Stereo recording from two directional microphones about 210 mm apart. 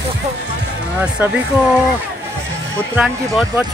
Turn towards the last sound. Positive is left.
turn(degrees=-5)  # may be behind; listen again after turning